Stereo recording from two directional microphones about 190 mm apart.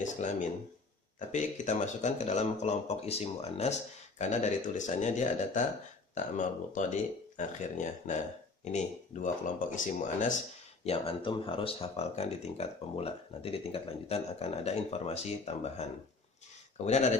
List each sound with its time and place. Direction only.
0.0 s speech: 40° left (ahead or behind)
10.8 s speech: 30° left (ahead or behind)